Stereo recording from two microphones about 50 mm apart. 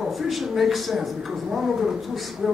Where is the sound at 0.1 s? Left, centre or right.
Centre.